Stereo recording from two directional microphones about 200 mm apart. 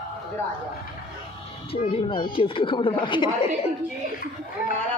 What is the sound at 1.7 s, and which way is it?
Speech, 30° left (ahead or behind).